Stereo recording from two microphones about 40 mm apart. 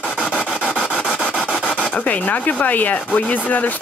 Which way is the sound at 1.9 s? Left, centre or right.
Left.